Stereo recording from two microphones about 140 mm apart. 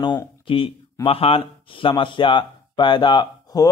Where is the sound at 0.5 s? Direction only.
40° left (ahead or behind).